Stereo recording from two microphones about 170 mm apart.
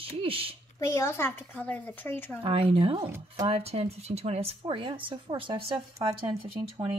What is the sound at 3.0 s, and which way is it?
Speech, 15° right (ahead or behind).